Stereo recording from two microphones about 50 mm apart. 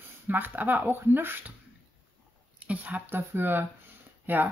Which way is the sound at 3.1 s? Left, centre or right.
Right.